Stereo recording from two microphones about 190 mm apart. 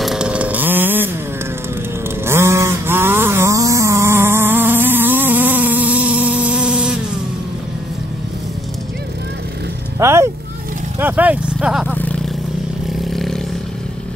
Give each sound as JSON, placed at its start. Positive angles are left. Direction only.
{"t": 0.0, "sound": "chainsaw", "side_deg": -5}
{"t": 2.2, "sound": "a sound", "side_deg": -15}
{"t": 9.9, "sound": "vehicle", "side_deg": -15}
{"t": 11.9, "sound": "vehicle", "side_deg": 10}